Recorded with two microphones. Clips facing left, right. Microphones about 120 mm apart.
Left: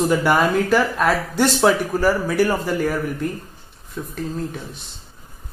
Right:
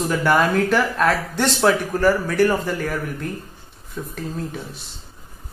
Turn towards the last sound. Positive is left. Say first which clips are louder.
# left 1 dB
turn(degrees=0)  # may be behind; listen again after turning